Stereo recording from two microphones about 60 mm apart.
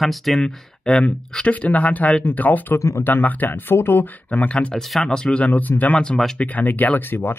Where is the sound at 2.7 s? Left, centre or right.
Left.